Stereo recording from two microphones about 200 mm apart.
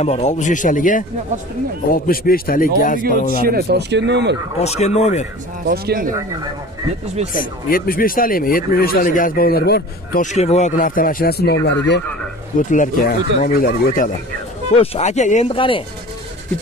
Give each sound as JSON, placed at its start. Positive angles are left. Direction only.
{"t": 0.0, "sound": "speech", "side_deg": 35}
{"t": 3.4, "sound": "speech", "side_deg": -55}
{"t": 4.6, "sound": "speech", "side_deg": 35}
{"t": 5.7, "sound": "speech", "side_deg": -50}
{"t": 7.3, "sound": "speech", "side_deg": 45}
{"t": 10.2, "sound": "speech", "side_deg": 35}
{"t": 12.5, "sound": "speech", "side_deg": 40}
{"t": 14.7, "sound": "speech", "side_deg": 30}